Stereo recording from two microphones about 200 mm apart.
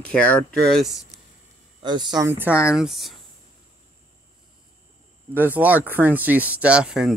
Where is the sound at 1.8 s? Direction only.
20° right (ahead or behind).